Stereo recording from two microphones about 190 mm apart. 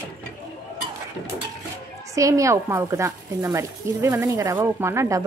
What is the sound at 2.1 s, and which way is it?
Speech, 15° right (ahead or behind).